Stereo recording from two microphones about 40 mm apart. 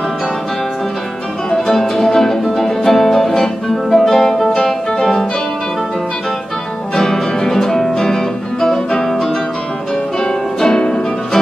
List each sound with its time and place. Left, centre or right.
1.7 s music: centre
7.0 s music: centre
10.2 s music: centre